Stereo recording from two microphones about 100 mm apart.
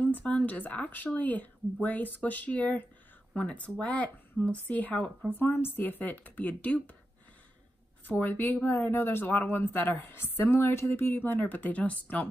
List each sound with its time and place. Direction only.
0.0 s speech: 15° left (ahead or behind)
8.1 s speech: 20° left (ahead or behind)